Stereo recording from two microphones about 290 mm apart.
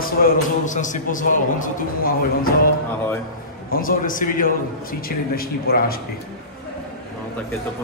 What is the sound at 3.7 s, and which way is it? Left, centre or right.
A man's voice, left.